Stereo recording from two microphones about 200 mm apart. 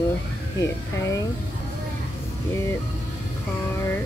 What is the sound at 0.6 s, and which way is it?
Speech, 15° left (ahead or behind).